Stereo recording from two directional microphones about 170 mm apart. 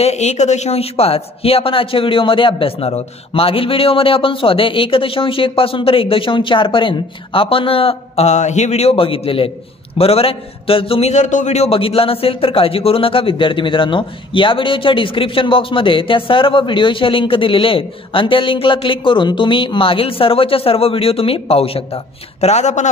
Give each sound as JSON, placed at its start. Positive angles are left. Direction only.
{"t": 0.0, "sound": "a man's voice", "side_deg": 40}